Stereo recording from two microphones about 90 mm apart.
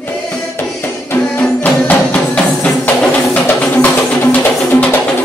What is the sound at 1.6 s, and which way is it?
Music, 20° left (ahead or behind).